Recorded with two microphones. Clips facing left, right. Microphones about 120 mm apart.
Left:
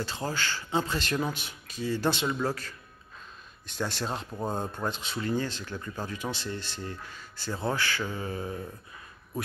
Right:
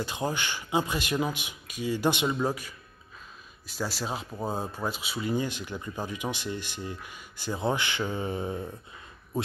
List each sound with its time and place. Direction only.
0.0 s speech: 15° right (ahead or behind)